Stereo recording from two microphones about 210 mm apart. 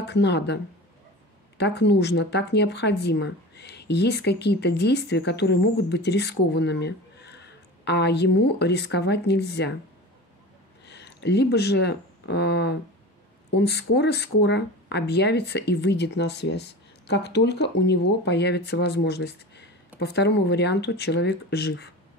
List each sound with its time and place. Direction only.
0.1 s speech: 55° left (ahead or behind)
1.6 s speech: 55° left (ahead or behind)
10.9 s speech: 55° left (ahead or behind)